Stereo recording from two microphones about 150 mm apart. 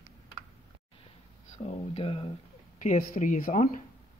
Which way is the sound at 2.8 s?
50° left (ahead or behind).